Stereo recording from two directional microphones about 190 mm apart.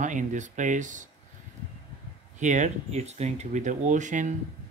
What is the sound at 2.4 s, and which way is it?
Speech, 40° right (ahead or behind).